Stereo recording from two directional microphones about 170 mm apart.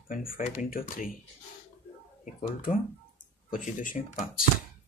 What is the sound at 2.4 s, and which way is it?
Speech, 55° left (ahead or behind).